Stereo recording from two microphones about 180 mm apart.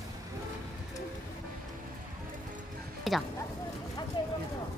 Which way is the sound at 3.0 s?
Centre (ahead or behind).